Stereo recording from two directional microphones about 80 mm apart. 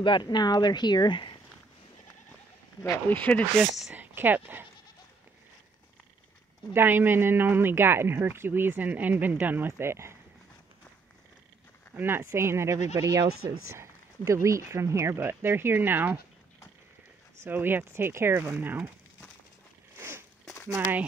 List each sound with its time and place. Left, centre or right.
0.0 s speech: left
2.8 s speech: left
3.9 s speech: right
6.7 s speech: right
9.7 s speech: right
11.9 s speech: right
12.9 s speech: right
17.4 s speech: right
20.0 s a sound: right
20.6 s speech: right